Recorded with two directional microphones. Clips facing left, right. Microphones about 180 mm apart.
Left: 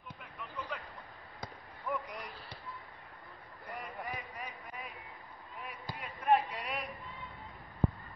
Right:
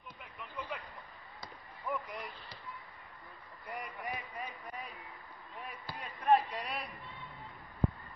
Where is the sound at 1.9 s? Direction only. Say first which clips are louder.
Left 1 dB; centre (ahead or behind).